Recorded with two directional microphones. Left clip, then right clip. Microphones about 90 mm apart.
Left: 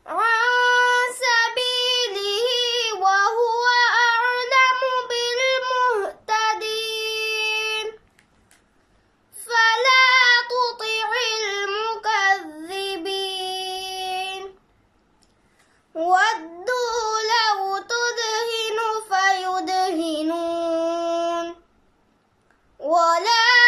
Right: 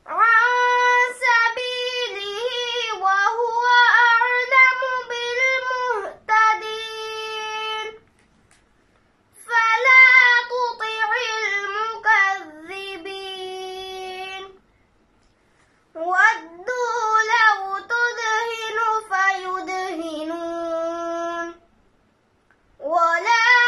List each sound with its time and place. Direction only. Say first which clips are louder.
0.0 s a sound: right 4 dB; 25° left (ahead or behind)
0.5 s female singing: left 1 dB; 20° left (ahead or behind)
1.2 s child singing: right 1 dB; 20° left (ahead or behind)
2.0 s female singing: left 4 dB; 20° left (ahead or behind)
4.3 s child singing: right 2 dB; 20° left (ahead or behind)
9.4 s child singing: even; 20° left (ahead or behind)
11.3 s child singing: right 1 dB; 15° left (ahead or behind)
16.1 s child singing: right 1 dB; 15° left (ahead or behind)
22.8 s child singing: left 1 dB; 20° left (ahead or behind)